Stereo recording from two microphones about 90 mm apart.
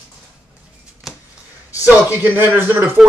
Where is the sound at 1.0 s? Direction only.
Centre (ahead or behind).